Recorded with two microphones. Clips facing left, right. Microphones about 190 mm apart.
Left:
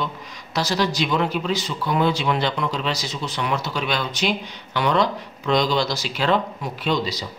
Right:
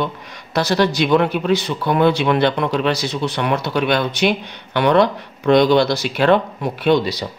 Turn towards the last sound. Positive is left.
turn(degrees=-65)  # may be behind; listen again after turning